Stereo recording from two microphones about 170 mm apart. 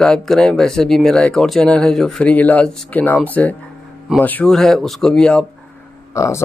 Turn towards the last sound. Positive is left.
turn(degrees=20)  # may be behind; listen again after turning